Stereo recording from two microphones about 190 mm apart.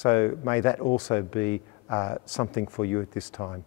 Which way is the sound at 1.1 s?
15° left (ahead or behind).